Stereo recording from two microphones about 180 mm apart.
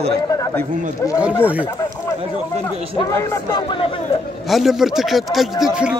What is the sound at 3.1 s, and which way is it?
Speech, 15° left (ahead or behind).